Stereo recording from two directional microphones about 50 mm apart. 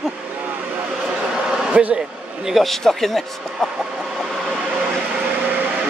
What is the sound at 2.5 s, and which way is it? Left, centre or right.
Speech, centre.